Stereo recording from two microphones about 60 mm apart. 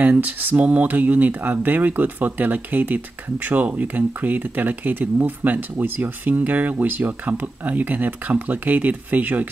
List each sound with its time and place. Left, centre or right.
0.0 s speech: right